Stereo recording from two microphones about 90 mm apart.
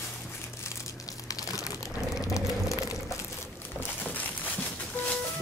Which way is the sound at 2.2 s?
35° left (ahead or behind).